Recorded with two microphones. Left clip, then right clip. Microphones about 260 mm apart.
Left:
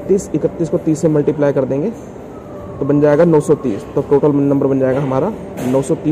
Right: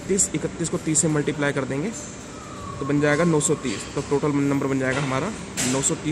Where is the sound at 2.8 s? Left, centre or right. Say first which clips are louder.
Left 10 dB; centre.